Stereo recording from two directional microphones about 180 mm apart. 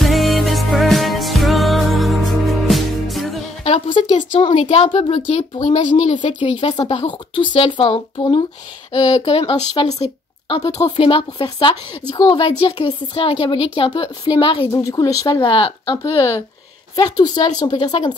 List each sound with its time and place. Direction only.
0.0 s music: centre (ahead or behind)
3.6 s a sound: 30° left (ahead or behind)
4.4 s speech: 35° left (ahead or behind)